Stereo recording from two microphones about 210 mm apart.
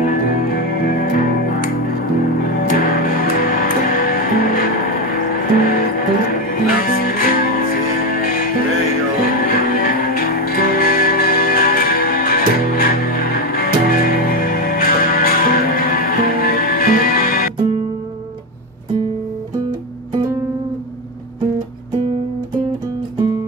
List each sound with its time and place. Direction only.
0.0 s music: 45° left (ahead or behind)
3.0 s music: 45° left (ahead or behind)